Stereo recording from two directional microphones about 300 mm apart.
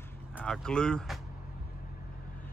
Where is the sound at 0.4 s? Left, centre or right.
Centre.